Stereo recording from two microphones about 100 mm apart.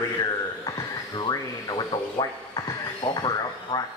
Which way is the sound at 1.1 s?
40° left (ahead or behind).